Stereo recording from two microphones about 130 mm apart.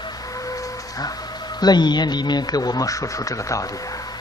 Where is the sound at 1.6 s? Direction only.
35° left (ahead or behind).